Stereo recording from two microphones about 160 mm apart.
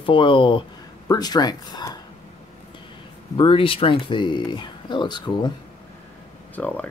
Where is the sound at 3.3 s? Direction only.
35° left (ahead or behind).